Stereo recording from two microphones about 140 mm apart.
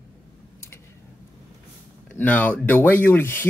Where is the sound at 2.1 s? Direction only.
10° left (ahead or behind).